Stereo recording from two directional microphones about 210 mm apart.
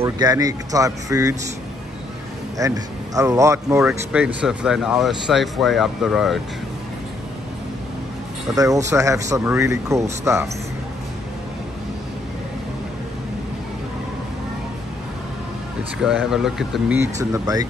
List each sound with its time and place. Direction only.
0.0 s speech: 15° right (ahead or behind)
2.6 s speech: 15° right (ahead or behind)
8.9 s speech: 15° right (ahead or behind)
16.0 s speech: centre (ahead or behind)
17.0 s speech: 15° right (ahead or behind)